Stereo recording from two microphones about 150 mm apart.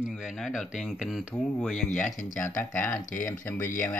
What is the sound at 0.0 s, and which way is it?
Speech, 5° right (ahead or behind).